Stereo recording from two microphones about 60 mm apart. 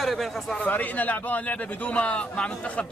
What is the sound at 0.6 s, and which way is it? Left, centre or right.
A man's voice, left.